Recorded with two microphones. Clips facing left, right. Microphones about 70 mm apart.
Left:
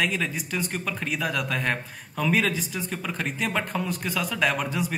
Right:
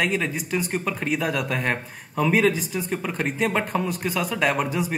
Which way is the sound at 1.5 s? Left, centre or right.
Centre.